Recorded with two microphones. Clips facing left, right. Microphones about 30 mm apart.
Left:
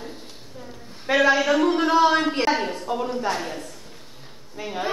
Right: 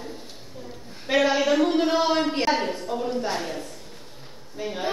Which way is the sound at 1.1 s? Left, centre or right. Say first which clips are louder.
Left 2 dB; centre.